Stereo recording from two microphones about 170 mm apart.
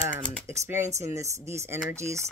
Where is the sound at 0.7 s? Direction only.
15° right (ahead or behind).